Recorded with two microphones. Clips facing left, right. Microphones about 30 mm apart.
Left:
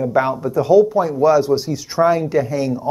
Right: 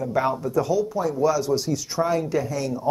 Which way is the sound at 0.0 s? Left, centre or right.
Left.